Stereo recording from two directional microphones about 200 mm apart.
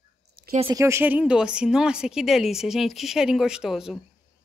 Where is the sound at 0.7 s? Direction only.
15° right (ahead or behind).